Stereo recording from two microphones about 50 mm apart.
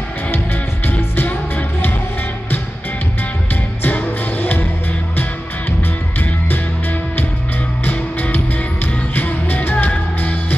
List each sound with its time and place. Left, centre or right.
3.8 s music: left
7.8 s music: left